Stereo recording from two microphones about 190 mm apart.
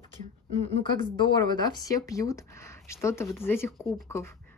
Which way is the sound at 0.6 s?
30° left (ahead or behind).